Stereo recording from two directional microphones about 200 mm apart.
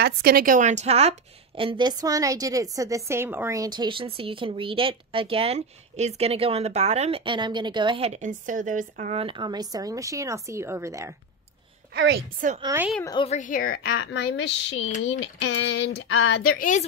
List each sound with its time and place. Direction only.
0.0 s a woman's voice: 50° right (ahead or behind); by 11.1 s 15° right (ahead or behind)
11.9 s a woman's voice: 65° right (ahead or behind)
12.6 s a woman's voice: 10° right (ahead or behind)
13.0 s a woman's voice: 25° left (ahead or behind)
13.4 s a woman's voice: 45° left (ahead or behind)
13.9 s speech: 70° left (ahead or behind); by 16.3 s 90° left
16.4 s a woman's voice: 40° left (ahead or behind)